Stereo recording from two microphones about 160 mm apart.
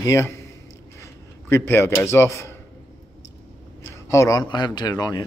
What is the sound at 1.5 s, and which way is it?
Speech, 15° left (ahead or behind).